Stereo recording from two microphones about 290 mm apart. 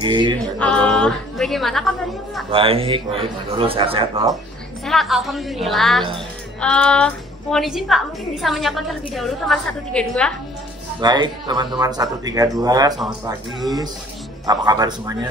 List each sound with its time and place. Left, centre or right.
0.0 s speech: centre
0.8 s a woman's voice: centre
2.5 s a man's voice: centre
4.8 s speech: centre
11.0 s speech: centre
14.4 s speech: centre